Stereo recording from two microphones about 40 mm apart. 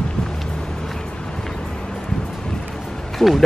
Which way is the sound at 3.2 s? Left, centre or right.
Centre.